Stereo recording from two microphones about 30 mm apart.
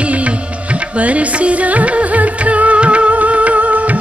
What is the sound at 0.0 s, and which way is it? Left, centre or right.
Music, right.